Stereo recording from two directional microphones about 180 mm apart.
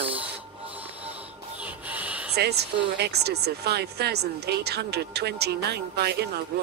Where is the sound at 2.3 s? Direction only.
65° right (ahead or behind).